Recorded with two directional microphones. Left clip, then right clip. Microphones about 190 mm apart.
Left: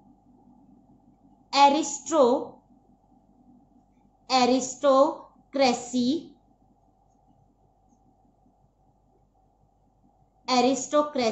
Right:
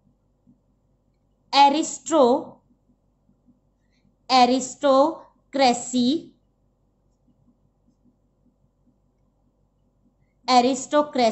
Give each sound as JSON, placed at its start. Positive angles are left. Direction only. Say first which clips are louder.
{"t": 1.5, "sound": "a woman's voice", "louder": "right 3 dB", "side_deg": -40}
{"t": 4.3, "sound": "a woman's voice", "louder": "right 5 dB", "side_deg": -40}
{"t": 10.4, "sound": "a woman's voice", "louder": "right 5 dB", "side_deg": -45}